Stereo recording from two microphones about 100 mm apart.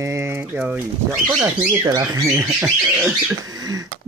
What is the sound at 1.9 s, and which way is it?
Speech, 40° right (ahead or behind).